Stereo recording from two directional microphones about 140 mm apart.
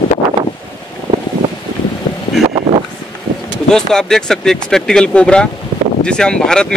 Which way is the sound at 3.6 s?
5° left (ahead or behind).